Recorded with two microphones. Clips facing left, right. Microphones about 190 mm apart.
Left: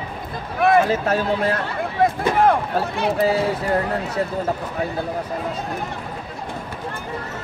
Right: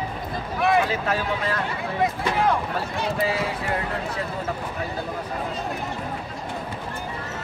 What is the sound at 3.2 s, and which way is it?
Speech, 40° left (ahead or behind).